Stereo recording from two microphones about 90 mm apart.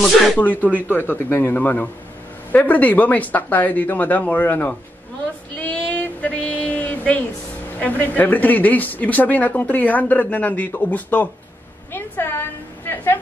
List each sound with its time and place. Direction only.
0.0 s speech: 15° left (ahead or behind)
5.6 s child singing: 15° left (ahead or behind)
7.8 s a woman's voice: 20° left (ahead or behind)